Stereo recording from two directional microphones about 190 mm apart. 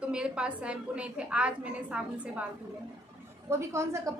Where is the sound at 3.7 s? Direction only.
15° right (ahead or behind).